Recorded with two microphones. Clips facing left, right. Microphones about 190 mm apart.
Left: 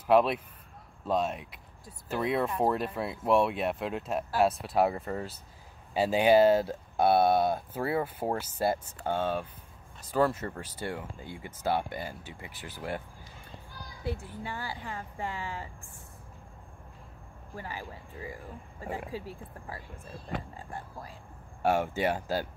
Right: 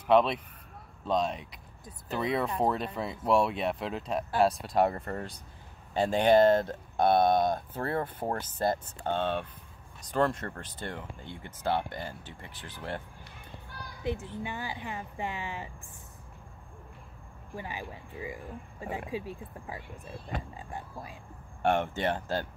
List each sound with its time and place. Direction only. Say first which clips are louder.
0.0 s speech: even; 5° left (ahead or behind)
13.2 s music: even; 65° right (ahead or behind)
14.0 s a child's voice: right 2 dB; 20° right (ahead or behind)
17.6 s speech: right 1 dB; 20° right (ahead or behind)
21.6 s speech: left 1 dB; 5° left (ahead or behind)